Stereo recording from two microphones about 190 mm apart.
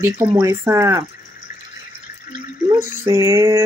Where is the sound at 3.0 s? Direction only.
15° right (ahead or behind).